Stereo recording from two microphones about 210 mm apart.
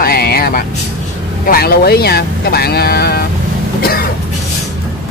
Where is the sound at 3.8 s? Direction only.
45° left (ahead or behind).